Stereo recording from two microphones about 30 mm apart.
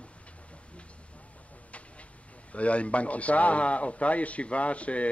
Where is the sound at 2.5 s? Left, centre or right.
Left.